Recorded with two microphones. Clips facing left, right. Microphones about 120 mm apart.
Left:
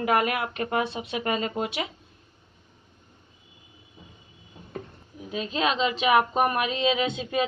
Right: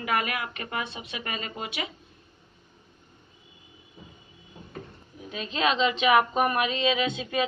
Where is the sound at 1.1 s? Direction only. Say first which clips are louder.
Left 9 dB; 75° left (ahead or behind).